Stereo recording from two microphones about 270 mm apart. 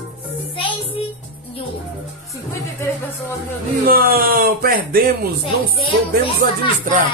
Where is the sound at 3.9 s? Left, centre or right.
Right.